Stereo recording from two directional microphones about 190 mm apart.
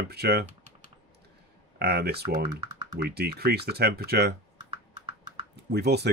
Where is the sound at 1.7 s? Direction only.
60° right (ahead or behind).